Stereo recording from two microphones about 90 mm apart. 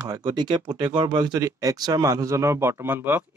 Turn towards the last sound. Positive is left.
turn(degrees=-20)  # may be behind; listen again after turning